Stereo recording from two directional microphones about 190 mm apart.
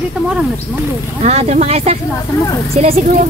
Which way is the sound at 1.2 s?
35° right (ahead or behind).